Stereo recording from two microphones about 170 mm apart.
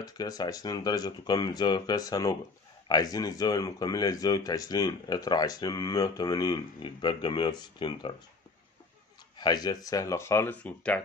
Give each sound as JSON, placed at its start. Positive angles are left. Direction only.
{"t": 0.0, "sound": "speech", "side_deg": 25}
{"t": 9.4, "sound": "speech", "side_deg": 25}